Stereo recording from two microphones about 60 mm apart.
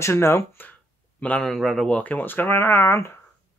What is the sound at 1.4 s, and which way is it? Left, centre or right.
Speech, centre.